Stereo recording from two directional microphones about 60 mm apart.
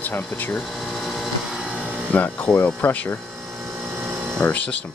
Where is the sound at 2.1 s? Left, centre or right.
Left.